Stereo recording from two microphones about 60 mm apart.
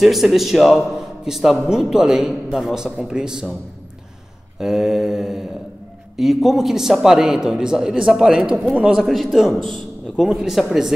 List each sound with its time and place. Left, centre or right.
0.0 s a man's voice: centre
4.6 s a man's voice: centre